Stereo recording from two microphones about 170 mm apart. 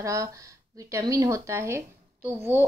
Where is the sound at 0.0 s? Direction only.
20° right (ahead or behind).